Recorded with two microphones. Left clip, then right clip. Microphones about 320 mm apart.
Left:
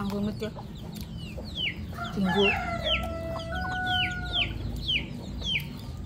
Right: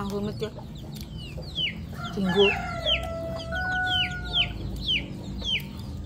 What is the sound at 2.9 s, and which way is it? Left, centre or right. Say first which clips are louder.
Chicken: right 5 dB; centre.